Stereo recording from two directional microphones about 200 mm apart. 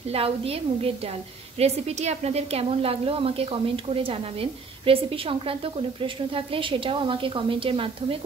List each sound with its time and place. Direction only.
0.1 s a woman's voice: 30° right (ahead or behind)